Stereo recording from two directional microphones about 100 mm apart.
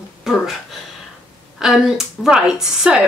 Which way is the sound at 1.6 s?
5° right (ahead or behind).